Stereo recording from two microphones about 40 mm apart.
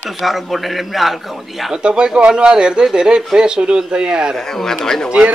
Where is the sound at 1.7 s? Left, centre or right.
Right.